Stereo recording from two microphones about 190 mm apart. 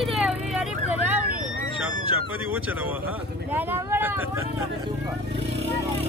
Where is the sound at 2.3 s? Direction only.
10° right (ahead or behind).